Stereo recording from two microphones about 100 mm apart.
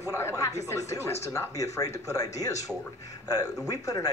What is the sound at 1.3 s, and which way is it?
A man's voice, 35° left (ahead or behind).